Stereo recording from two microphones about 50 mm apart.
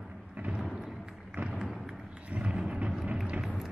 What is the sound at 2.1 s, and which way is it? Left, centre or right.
Thunder, right.